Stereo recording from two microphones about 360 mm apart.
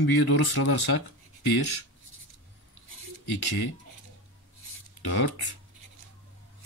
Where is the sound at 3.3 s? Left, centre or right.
Left.